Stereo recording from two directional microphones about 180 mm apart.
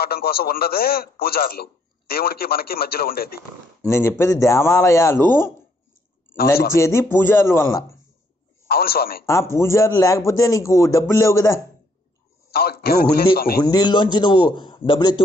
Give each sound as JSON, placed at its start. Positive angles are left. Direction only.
{"t": 0.0, "sound": "a man's voice", "side_deg": 55}
{"t": 3.8, "sound": "a man's voice", "side_deg": 15}
{"t": 6.7, "sound": "a man's voice", "side_deg": 15}
{"t": 8.6, "sound": "a man's voice", "side_deg": 60}
{"t": 9.2, "sound": "a man's voice", "side_deg": 15}
{"t": 12.4, "sound": "a man's voice", "side_deg": 60}
{"t": 13.6, "sound": "a man's voice", "side_deg": 25}